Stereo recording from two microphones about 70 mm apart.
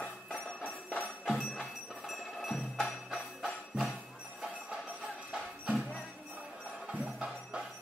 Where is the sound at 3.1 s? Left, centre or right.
Centre.